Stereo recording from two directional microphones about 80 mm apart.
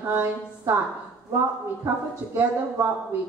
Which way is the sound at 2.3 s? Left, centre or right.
Right.